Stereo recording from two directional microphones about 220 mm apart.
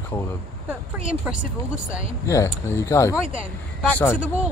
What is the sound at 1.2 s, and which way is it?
Speech, 5° right (ahead or behind).